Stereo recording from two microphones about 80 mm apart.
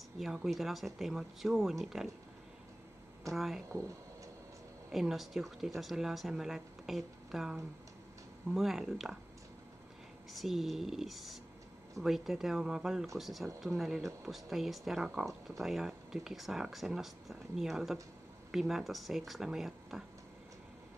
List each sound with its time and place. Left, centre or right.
0.2 s speech: centre
3.3 s speech: centre
3.6 s speech: right
4.9 s speech: centre
8.5 s speech: centre
10.3 s speech: centre